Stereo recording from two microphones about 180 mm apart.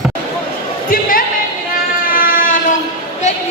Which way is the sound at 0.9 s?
50° left (ahead or behind).